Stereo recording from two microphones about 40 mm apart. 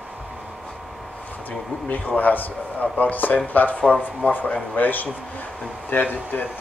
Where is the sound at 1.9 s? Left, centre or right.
Left.